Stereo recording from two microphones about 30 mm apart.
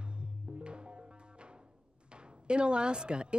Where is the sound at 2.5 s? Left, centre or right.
Right.